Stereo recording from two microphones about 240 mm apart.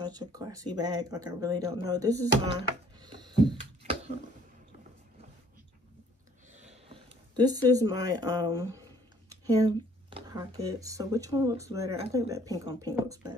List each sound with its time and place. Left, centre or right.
0.0 s speech: centre
6.5 s speech: right